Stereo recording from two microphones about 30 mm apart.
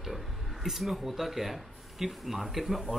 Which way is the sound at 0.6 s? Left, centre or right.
Centre.